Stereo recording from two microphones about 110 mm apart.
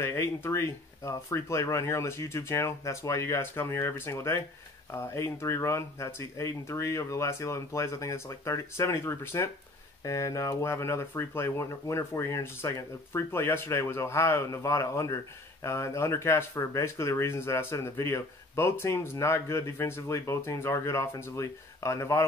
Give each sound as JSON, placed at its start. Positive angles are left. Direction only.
{"t": 0.0, "sound": "speech", "side_deg": 20}